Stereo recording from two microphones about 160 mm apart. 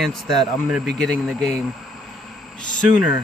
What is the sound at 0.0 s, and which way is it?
Speech, centre (ahead or behind).